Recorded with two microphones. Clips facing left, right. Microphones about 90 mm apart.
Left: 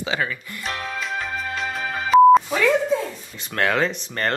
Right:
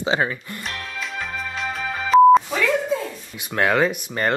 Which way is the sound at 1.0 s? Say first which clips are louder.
Left 2 dB; centre (ahead or behind).